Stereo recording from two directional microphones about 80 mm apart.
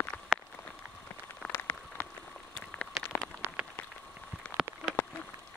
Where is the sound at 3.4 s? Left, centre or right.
Right.